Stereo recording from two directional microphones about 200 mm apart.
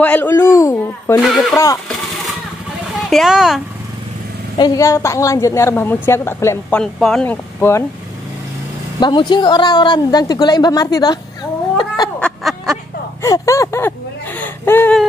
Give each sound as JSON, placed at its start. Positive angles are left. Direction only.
{"t": 0.0, "sound": "speech", "side_deg": 10}
{"t": 1.2, "sound": "speech", "side_deg": 0}
{"t": 3.1, "sound": "speech", "side_deg": 0}
{"t": 4.6, "sound": "speech", "side_deg": 20}
{"t": 9.0, "sound": "a woman's voice", "side_deg": 20}
{"t": 12.2, "sound": "a sound", "side_deg": 0}
{"t": 13.2, "sound": "speech", "side_deg": 15}